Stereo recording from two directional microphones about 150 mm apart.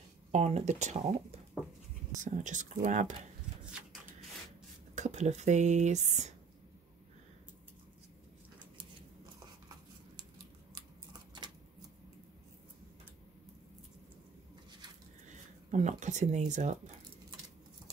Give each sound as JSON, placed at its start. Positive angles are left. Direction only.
{"t": 0.3, "sound": "speech", "side_deg": -45}
{"t": 2.2, "sound": "speech", "side_deg": -55}
{"t": 4.9, "sound": "speech", "side_deg": -50}
{"t": 15.2, "sound": "speech", "side_deg": -50}